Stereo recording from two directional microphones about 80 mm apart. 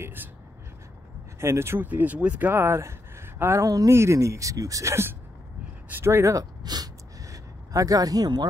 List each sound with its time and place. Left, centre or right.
0.0 s speech: right
1.4 s speech: right
1.9 s speech: centre
3.6 s a woman's voice: right
6.6 s a sound: right